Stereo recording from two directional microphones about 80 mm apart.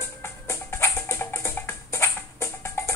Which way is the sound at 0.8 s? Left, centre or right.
Left.